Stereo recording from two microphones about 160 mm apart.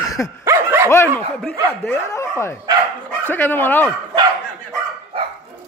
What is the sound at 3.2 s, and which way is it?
Speech, 10° left (ahead or behind).